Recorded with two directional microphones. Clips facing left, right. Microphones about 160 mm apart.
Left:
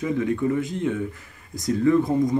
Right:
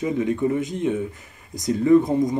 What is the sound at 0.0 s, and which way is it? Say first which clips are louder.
Speech: right 1 dB; 20° right (ahead or behind).